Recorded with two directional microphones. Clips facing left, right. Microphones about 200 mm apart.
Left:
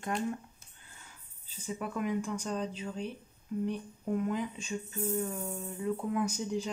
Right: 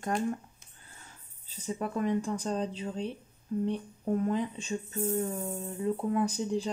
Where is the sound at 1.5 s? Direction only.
40° right (ahead or behind).